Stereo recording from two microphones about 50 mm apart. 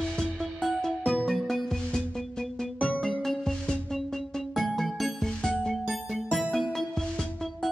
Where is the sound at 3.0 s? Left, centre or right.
Centre.